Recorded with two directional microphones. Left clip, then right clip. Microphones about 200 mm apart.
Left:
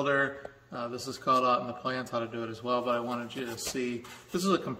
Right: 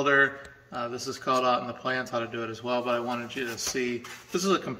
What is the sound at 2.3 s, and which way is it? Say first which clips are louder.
Speech: right 2 dB; 40° left (ahead or behind).